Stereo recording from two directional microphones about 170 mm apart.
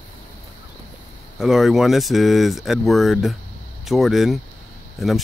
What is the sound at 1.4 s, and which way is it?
Speech, centre (ahead or behind).